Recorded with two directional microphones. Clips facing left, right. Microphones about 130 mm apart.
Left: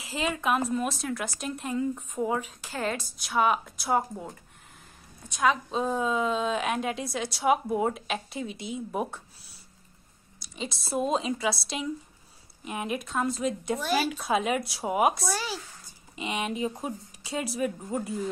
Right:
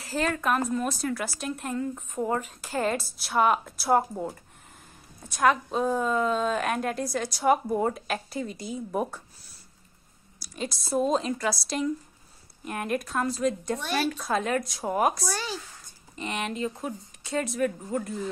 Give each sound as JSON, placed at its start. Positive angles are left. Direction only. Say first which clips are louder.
{"t": 0.0, "sound": "a woman's voice", "louder": "right 2 dB", "side_deg": 0}
{"t": 2.6, "sound": "a woman's voice", "louder": "right 4 dB", "side_deg": -10}
{"t": 5.7, "sound": "a woman's voice", "louder": "right 2 dB", "side_deg": 0}
{"t": 10.4, "sound": "a woman's voice", "louder": "right 2 dB", "side_deg": 0}